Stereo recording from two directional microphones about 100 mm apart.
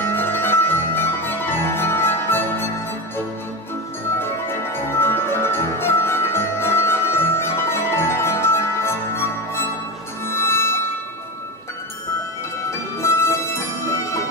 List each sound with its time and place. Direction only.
0.0 s music: 20° left (ahead or behind)
4.2 s music: 25° left (ahead or behind)
13.0 s music: 25° left (ahead or behind)